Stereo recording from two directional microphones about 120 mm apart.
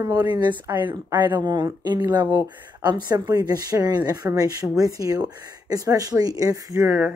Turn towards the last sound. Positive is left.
turn(degrees=-15)  # may be behind; listen again after turning